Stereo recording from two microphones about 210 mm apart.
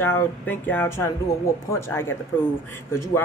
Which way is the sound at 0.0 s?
10° left (ahead or behind).